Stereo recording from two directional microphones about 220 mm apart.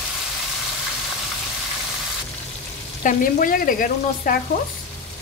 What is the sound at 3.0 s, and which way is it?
Frying, 40° left (ahead or behind).